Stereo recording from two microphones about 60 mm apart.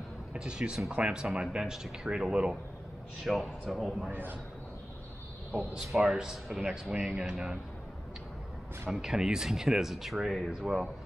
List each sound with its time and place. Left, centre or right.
0.3 s a man's voice: centre
4.1 s a man's voice: right
5.9 s speech: centre
8.9 s speech: centre